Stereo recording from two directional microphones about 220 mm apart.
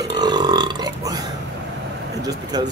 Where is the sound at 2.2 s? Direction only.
20° right (ahead or behind).